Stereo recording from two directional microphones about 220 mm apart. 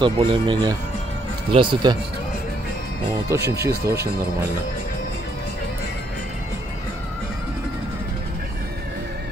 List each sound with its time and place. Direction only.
0.0 s speech: 20° right (ahead or behind)
3.3 s speech: 15° right (ahead or behind)